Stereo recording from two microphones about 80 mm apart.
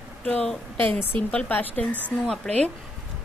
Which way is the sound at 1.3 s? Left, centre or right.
Centre.